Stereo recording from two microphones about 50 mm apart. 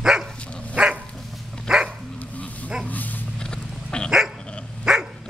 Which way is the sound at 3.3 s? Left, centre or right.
Centre.